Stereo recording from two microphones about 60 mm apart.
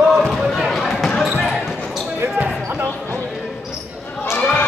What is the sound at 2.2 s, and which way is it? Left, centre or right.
Basketball bounce, right.